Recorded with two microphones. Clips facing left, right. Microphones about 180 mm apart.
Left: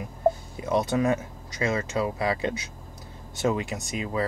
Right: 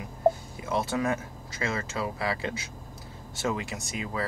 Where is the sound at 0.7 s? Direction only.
20° left (ahead or behind).